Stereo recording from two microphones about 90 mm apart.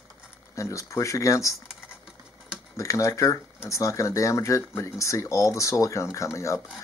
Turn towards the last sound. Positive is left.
turn(degrees=35)  # may be behind; listen again after turning